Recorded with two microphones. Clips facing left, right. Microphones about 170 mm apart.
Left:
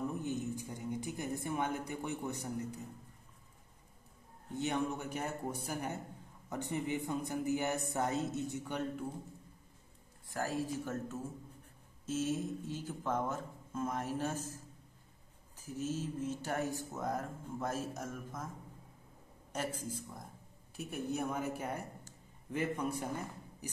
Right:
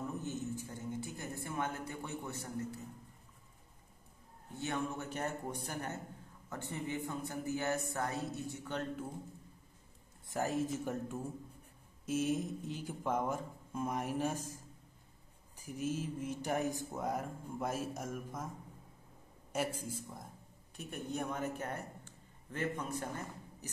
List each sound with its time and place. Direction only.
0.2 s a sound: 15° left (ahead or behind)
4.6 s a man's voice: 20° left (ahead or behind)
10.2 s speech: 20° right (ahead or behind)
19.5 s speech: 10° right (ahead or behind)
20.7 s a man's voice: 5° left (ahead or behind)